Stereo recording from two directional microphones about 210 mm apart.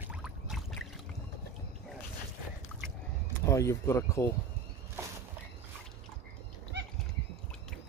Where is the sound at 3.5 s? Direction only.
15° left (ahead or behind).